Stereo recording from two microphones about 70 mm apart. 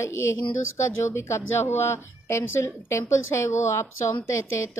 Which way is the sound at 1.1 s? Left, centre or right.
Left.